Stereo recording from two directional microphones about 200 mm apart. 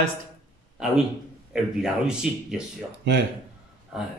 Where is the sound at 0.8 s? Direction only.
Centre (ahead or behind).